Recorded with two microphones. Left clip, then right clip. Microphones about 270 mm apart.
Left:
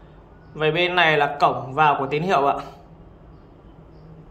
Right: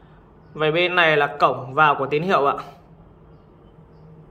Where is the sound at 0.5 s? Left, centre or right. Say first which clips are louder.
Right 1 dB; centre.